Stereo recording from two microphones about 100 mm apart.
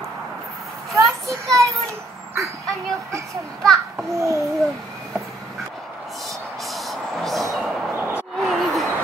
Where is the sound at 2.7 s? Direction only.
30° right (ahead or behind).